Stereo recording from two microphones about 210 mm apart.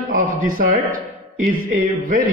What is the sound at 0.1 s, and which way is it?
A man's voice, 40° right (ahead or behind).